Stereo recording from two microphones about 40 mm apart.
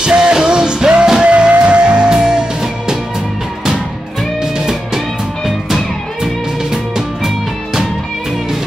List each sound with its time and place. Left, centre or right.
0.0 s music: centre
4.4 s music: centre